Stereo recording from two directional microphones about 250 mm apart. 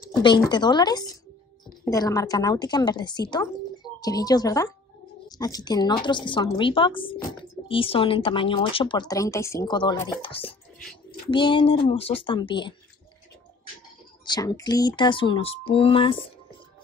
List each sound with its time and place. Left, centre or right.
0.1 s a woman's voice: centre
14.2 s speech: centre